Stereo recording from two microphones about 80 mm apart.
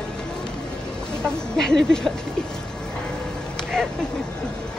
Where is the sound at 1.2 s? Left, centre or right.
Centre.